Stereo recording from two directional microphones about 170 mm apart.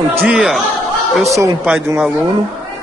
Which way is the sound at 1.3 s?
20° right (ahead or behind).